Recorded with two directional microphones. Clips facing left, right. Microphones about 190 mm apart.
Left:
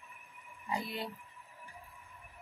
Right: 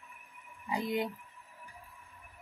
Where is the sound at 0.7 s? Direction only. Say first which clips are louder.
Right 5 dB; 15° right (ahead or behind).